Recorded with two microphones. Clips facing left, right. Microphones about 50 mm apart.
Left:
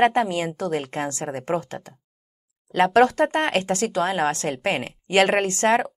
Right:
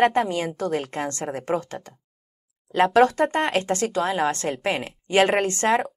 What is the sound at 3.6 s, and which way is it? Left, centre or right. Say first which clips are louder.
Speech: left 1 dB; centre.